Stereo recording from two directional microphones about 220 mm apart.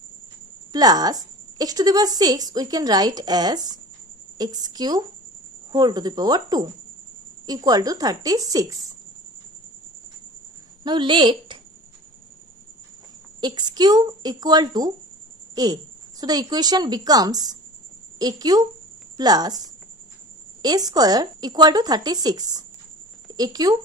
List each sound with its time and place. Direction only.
0.7 s speech: 15° right (ahead or behind)
10.8 s a woman's voice: 20° right (ahead or behind)
13.4 s speech: 20° right (ahead or behind)
20.6 s speech: 15° right (ahead or behind)